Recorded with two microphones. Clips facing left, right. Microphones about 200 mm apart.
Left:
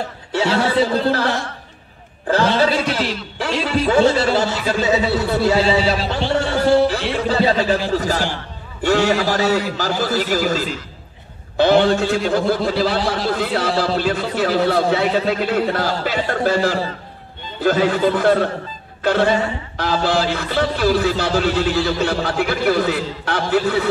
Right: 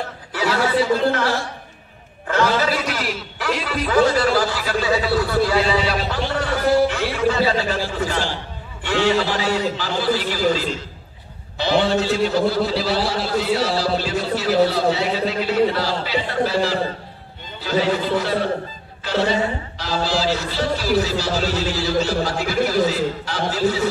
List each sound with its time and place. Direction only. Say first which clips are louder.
0.3 s speech: left 2 dB; 25° left (ahead or behind)
2.2 s a man's voice: left 3 dB; 30° left (ahead or behind)
8.8 s a man's voice: left 3 dB; 45° left (ahead or behind); by 23.9 s 60° left (ahead or behind)